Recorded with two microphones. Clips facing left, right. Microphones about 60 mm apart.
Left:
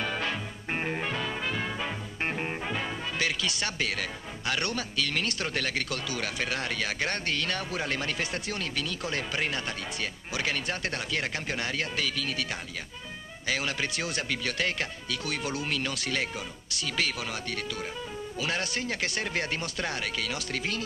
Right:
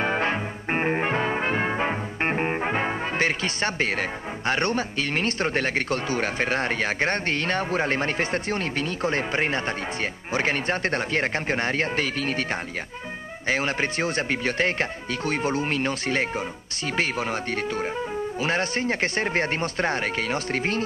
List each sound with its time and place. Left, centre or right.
0.0 s brass instrument: right
10.3 s speech: right